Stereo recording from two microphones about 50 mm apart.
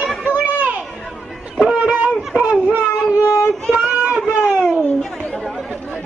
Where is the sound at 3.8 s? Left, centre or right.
Right.